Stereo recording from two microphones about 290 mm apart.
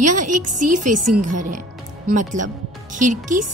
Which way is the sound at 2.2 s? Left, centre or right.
Right.